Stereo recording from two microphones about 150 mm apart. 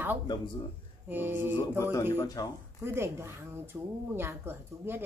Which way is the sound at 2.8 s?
15° right (ahead or behind).